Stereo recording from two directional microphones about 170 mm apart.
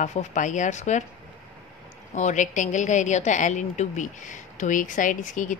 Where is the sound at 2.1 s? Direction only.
45° left (ahead or behind).